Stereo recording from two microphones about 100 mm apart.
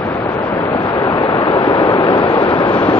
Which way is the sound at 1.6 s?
45° left (ahead or behind).